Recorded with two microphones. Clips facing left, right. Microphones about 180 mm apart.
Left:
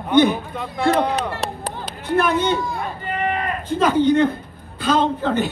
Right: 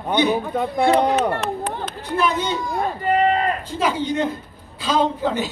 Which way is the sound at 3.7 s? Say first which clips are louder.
Left 6 dB; 55° left (ahead or behind).